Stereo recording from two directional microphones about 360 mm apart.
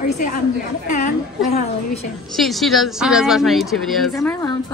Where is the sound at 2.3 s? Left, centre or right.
Centre.